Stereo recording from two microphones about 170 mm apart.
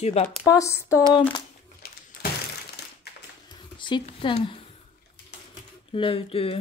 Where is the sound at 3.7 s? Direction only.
30° left (ahead or behind).